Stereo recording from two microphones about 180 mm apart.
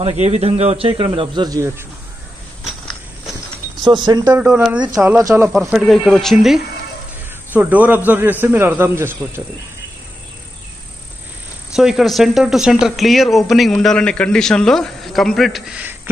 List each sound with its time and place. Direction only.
0.0 s speech: 40° right (ahead or behind); by 1.9 s 20° right (ahead or behind)
3.8 s speech: 25° right (ahead or behind)
4.3 s a man's voice: 10° right (ahead or behind)
5.1 s a man's voice: 15° right (ahead or behind)
5.5 s a man's voice: centre (ahead or behind)
11.7 s speech: centre (ahead or behind)